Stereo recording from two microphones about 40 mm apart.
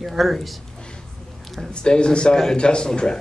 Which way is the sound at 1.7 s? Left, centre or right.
Left.